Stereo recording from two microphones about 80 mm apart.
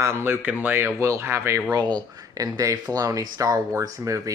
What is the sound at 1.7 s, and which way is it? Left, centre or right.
Speech, right.